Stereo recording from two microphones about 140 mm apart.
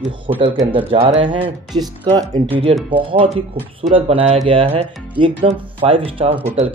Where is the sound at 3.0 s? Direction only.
40° right (ahead or behind).